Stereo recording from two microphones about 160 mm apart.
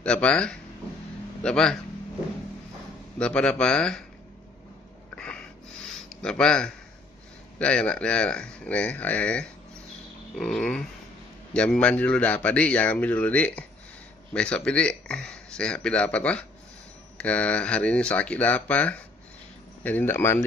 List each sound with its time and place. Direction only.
0.0 s speech: 5° left (ahead or behind)
1.4 s a sound: 5° left (ahead or behind)
3.2 s speech: 5° left (ahead or behind)
5.1 s snort: 5° left (ahead or behind)
6.0 s speech: 5° left (ahead or behind)
10.3 s a sound: 5° left (ahead or behind)
11.5 s speech: 5° left (ahead or behind)